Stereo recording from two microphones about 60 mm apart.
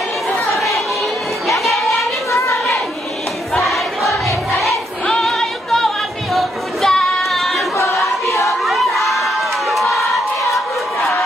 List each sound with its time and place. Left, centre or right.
0.6 s chatter: centre
1.5 s music: centre
2.3 s a sound: left
3.5 s choir: centre
5.2 s music: centre
7.9 s choir: centre
8.6 s crowd: centre